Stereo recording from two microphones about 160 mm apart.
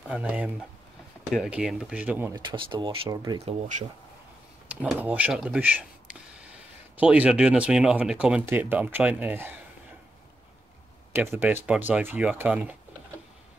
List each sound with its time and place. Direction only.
0.1 s speech: 10° right (ahead or behind)
2.3 s speech: 30° right (ahead or behind)
3.4 s speech: 50° right (ahead or behind)
4.6 s speech: 10° right (ahead or behind)
7.0 s speech: 10° right (ahead or behind)
11.1 s speech: 15° right (ahead or behind)